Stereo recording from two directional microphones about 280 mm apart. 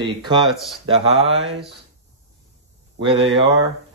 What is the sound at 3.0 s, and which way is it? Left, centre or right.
Speech, centre.